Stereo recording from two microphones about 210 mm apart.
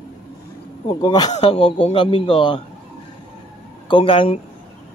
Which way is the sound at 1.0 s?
20° left (ahead or behind).